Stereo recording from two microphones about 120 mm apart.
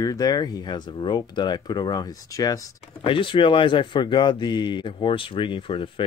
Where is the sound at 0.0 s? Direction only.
30° left (ahead or behind).